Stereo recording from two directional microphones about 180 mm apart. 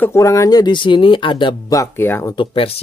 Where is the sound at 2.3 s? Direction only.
30° left (ahead or behind).